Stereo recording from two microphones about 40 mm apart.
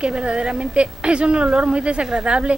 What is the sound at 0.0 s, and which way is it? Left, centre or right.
A woman's voice, right.